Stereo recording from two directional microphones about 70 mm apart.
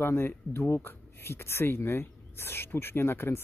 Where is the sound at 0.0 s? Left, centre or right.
Left.